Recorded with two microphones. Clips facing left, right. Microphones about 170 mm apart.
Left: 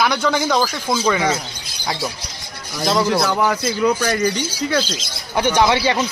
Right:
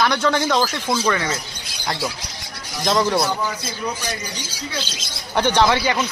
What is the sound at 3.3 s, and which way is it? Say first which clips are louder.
Speech: left 8 dB; 70° left (ahead or behind).